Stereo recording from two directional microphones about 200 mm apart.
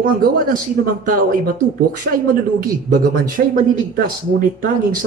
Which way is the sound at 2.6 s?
45° right (ahead or behind).